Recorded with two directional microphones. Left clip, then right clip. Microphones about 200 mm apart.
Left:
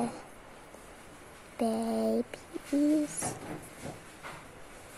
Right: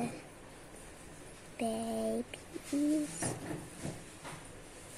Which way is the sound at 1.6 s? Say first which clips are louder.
Left 5 dB; 15° left (ahead or behind).